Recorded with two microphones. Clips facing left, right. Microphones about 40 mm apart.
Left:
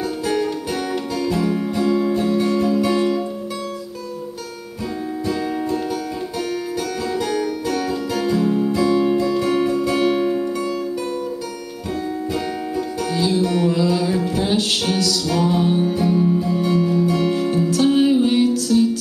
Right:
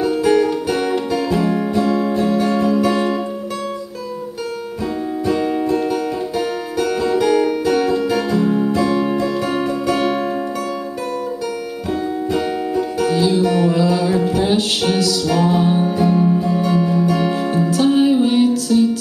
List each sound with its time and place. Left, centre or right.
0.0 s music: centre
5.2 s music: centre
12.3 s music: centre